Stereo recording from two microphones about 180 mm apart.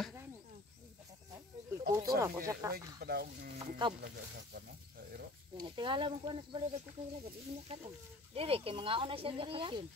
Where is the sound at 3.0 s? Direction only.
60° right (ahead or behind).